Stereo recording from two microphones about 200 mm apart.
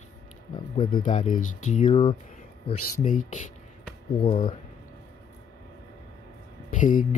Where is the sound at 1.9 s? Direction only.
20° left (ahead or behind).